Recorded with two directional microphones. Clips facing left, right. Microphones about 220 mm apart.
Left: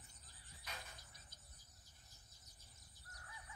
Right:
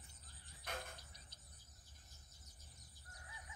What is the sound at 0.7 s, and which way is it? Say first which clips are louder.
Cricket: right 7 dB; 50° right (ahead or behind).